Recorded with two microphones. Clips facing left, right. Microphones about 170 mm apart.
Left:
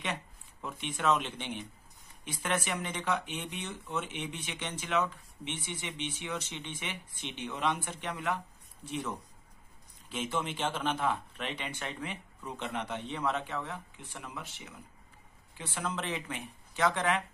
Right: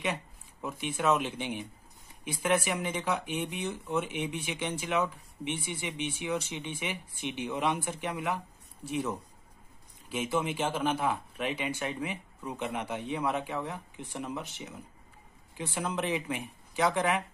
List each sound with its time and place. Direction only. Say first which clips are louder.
0.0 s speech: right 4 dB; 10° right (ahead or behind)